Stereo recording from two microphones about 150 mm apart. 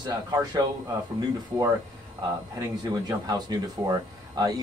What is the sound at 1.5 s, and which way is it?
Speech, 15° right (ahead or behind).